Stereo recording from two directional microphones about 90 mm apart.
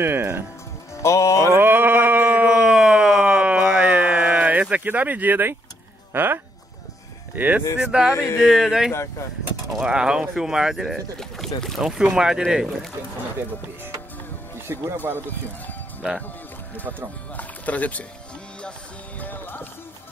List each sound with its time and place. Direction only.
0.0 s speech: 25° right (ahead or behind)
0.9 s speech: 35° left (ahead or behind)
1.5 s a sound: 25° right (ahead or behind)
6.1 s speech: 25° right (ahead or behind); by 11.8 s 5° left (ahead or behind)
11.8 s speech: 5° right (ahead or behind)
14.7 s speech: 30° right (ahead or behind)
17.3 s speech: 15° left (ahead or behind)
18.6 s music: 15° left (ahead or behind)